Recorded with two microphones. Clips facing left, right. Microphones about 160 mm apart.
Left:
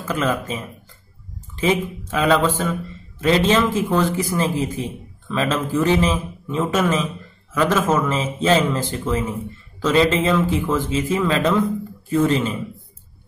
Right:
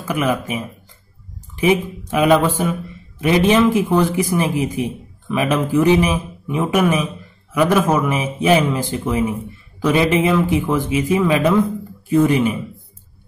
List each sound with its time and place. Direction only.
0.0 s a man's voice: 15° right (ahead or behind)